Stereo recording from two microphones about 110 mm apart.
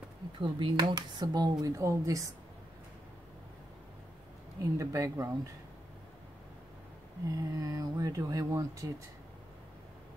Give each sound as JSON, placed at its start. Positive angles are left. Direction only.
{"t": 0.4, "sound": "speech", "side_deg": -45}
{"t": 4.6, "sound": "speech", "side_deg": -30}
{"t": 7.2, "sound": "speech", "side_deg": -30}